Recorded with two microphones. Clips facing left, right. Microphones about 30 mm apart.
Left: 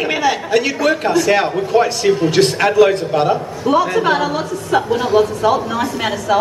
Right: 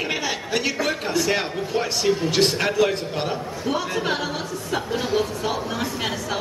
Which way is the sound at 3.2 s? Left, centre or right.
Centre.